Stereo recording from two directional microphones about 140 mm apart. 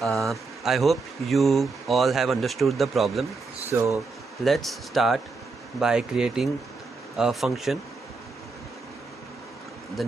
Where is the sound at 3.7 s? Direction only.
20° right (ahead or behind).